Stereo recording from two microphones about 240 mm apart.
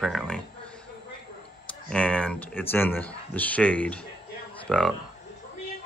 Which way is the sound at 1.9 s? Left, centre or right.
Centre.